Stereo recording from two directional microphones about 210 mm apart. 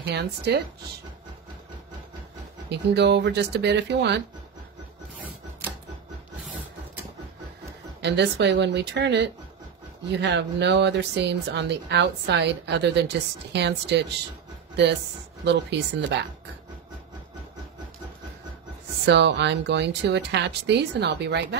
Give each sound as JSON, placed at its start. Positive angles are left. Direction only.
{"t": 0.0, "sound": "a woman's voice", "side_deg": -50}
{"t": 2.7, "sound": "speech", "side_deg": -55}
{"t": 8.0, "sound": "speech", "side_deg": -55}
{"t": 15.4, "sound": "speech", "side_deg": -55}
{"t": 19.0, "sound": "speech", "side_deg": -55}